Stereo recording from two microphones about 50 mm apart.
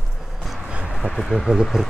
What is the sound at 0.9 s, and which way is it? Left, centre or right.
Speech, centre.